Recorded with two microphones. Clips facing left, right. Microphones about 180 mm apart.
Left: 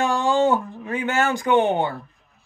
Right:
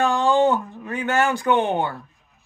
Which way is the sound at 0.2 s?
15° left (ahead or behind).